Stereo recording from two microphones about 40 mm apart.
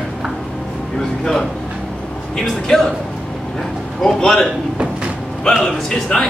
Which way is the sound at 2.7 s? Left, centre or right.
Centre.